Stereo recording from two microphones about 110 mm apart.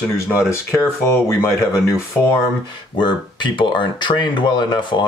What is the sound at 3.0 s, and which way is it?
Speech, 45° left (ahead or behind).